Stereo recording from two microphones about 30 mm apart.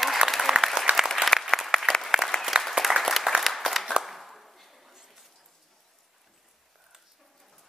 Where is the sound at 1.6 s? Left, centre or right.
Centre.